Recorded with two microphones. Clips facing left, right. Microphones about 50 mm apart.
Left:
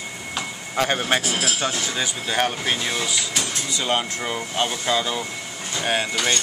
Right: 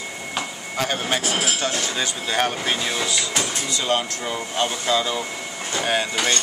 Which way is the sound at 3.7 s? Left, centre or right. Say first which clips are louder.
Even; centre.